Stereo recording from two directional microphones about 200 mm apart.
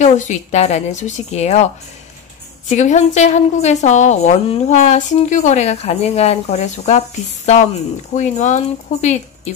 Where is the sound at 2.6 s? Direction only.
35° left (ahead or behind).